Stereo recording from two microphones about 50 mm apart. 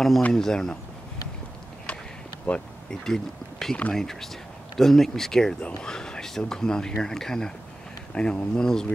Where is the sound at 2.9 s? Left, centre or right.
Centre.